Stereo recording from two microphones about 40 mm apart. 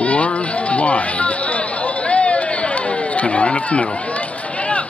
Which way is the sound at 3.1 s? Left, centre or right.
Left.